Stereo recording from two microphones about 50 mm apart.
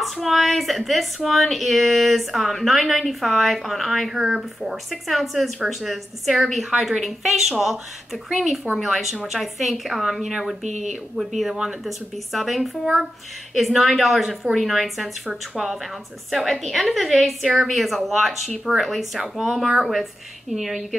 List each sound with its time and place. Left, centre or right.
0.0 s speech: centre